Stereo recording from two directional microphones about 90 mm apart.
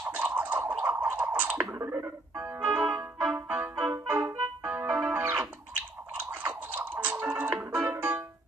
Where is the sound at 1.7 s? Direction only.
30° right (ahead or behind).